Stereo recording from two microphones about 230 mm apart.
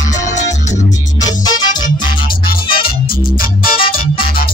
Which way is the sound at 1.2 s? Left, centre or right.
Centre.